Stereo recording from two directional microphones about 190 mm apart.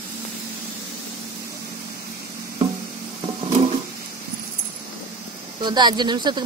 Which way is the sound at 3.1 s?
35° right (ahead or behind).